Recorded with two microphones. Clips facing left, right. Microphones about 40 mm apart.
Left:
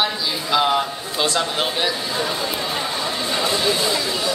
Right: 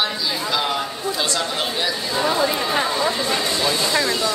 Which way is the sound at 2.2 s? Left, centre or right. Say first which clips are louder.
Right 8 dB; centre.